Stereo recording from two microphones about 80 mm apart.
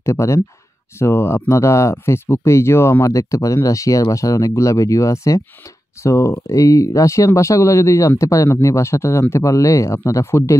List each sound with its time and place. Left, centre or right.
0.0 s speech: left